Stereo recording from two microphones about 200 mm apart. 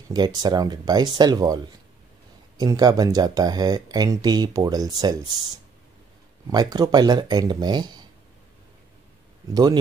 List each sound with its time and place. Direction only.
0.1 s speech: 20° right (ahead or behind)
6.5 s speech: 20° right (ahead or behind)
9.5 s speech: 20° right (ahead or behind)